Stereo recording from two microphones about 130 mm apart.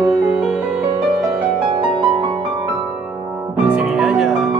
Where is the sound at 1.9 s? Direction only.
40° right (ahead or behind).